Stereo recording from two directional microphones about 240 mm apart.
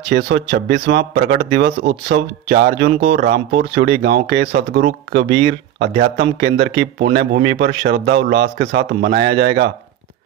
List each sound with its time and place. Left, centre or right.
0.1 s speech: right